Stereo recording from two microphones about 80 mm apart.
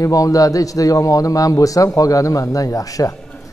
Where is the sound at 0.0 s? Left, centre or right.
Left.